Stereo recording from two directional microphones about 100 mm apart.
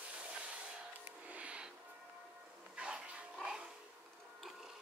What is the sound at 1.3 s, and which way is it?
Music, 10° right (ahead or behind).